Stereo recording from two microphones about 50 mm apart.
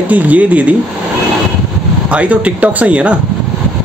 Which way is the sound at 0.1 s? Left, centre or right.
Right.